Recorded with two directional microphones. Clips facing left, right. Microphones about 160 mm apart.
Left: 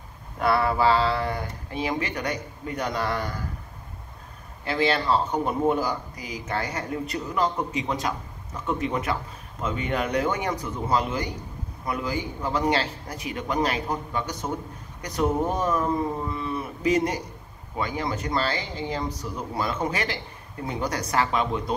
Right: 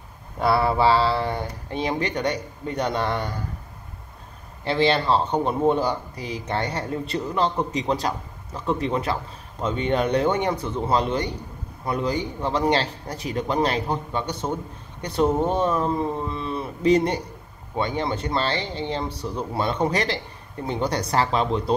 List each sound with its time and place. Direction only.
0.4 s a man's voice: 30° right (ahead or behind)
4.6 s a man's voice: 30° right (ahead or behind)